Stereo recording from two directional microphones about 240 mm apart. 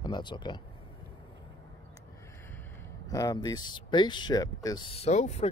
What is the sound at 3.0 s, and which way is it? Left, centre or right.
Speech, centre.